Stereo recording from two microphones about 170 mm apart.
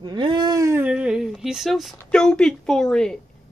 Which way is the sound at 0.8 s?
5° right (ahead or behind).